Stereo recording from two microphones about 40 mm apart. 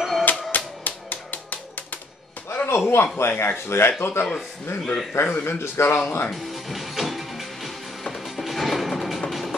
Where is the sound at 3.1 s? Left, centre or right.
Left.